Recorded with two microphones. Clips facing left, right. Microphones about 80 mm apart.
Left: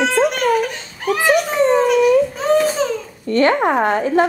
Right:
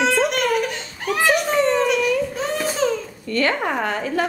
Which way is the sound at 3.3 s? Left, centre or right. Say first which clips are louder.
Left 7 dB; left.